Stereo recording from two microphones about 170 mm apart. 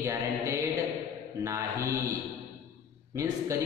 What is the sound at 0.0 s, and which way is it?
Mantra, 15° right (ahead or behind).